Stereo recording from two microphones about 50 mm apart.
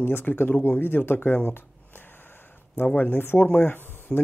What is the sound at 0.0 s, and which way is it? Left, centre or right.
Speech, left.